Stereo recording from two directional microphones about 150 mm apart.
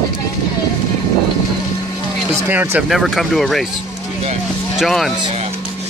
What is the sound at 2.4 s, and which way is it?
Speech, 15° right (ahead or behind).